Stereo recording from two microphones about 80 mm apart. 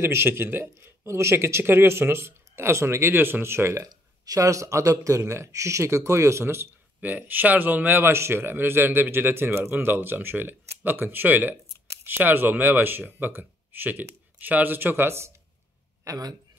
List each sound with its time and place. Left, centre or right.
0.0 s speech: right
16.0 s a man's voice: right